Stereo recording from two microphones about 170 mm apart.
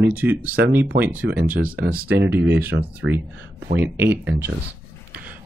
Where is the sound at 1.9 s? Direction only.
65° right (ahead or behind).